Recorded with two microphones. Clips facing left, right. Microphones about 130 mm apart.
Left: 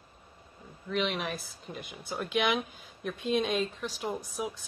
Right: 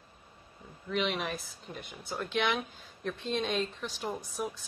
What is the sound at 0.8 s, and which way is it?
Speech, centre (ahead or behind).